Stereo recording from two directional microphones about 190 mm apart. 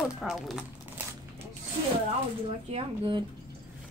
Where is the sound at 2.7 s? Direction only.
25° right (ahead or behind).